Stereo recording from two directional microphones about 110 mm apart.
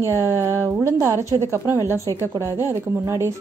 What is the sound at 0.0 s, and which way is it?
Speech, 25° right (ahead or behind).